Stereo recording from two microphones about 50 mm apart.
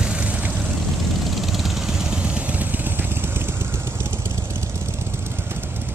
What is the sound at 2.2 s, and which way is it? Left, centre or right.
Vehicle, right.